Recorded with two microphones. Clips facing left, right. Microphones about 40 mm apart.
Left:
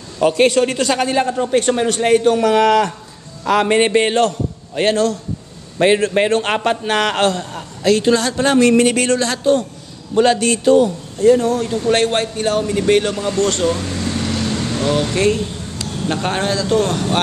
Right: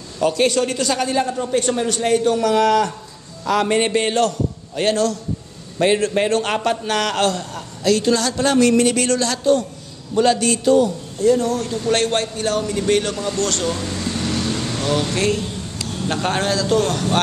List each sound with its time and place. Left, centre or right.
0.2 s a man's voice: left; by 13.7 s centre
14.9 s a man's voice: centre